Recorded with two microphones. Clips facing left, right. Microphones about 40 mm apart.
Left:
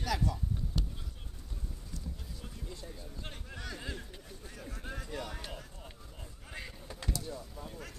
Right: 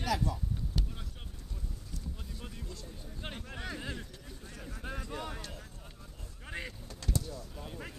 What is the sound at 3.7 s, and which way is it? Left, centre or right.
Speech, centre.